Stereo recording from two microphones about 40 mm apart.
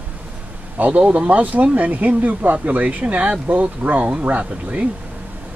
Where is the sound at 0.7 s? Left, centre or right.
Right.